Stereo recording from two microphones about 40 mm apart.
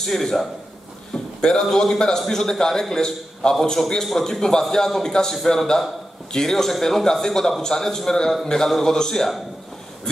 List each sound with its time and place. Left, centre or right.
0.0 s a man's voice: centre
1.4 s a man's voice: centre